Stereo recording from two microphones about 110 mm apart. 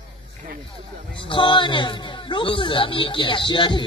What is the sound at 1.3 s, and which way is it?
Speech, 45° left (ahead or behind).